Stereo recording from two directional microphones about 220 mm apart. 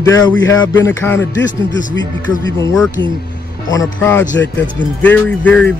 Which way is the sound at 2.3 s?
15° left (ahead or behind).